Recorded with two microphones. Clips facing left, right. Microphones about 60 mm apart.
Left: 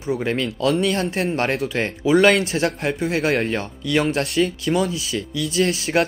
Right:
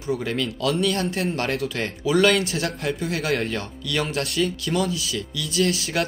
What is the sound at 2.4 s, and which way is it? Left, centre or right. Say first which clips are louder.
Speech: left 4 dB; left.